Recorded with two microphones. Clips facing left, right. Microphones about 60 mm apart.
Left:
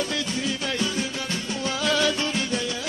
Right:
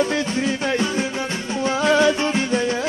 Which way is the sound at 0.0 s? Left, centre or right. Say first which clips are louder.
Right 7 dB; right.